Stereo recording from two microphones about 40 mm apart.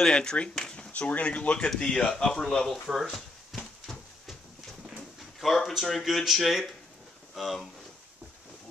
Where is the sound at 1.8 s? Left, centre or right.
Left.